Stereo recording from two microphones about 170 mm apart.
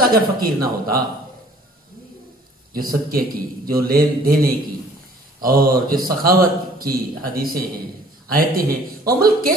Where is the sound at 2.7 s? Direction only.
60° right (ahead or behind).